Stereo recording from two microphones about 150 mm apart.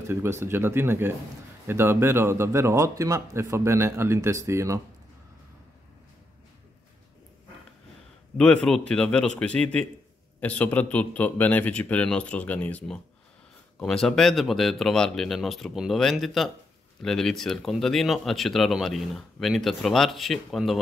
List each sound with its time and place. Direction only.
0.0 s speech: 15° right (ahead or behind)
8.4 s a man's voice: 5° left (ahead or behind)